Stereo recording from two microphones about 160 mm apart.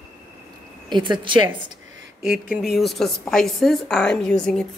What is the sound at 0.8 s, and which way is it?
Speech, 30° right (ahead or behind).